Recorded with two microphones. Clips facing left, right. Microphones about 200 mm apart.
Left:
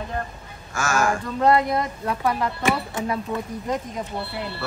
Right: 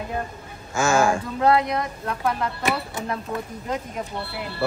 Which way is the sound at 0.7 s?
25° right (ahead or behind).